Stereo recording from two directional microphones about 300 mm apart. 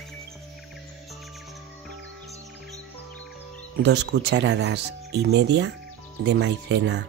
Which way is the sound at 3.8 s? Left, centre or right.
Right.